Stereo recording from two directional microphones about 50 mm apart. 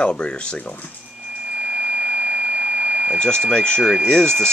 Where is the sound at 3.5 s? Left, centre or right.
Centre.